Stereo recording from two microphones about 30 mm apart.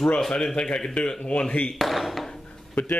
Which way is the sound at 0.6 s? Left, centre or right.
Left.